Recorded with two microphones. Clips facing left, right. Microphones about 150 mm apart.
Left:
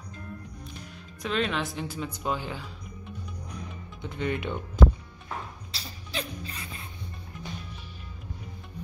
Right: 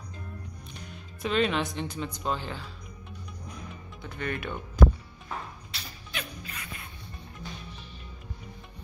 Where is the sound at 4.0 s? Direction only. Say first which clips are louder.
Left 4 dB; 20° left (ahead or behind).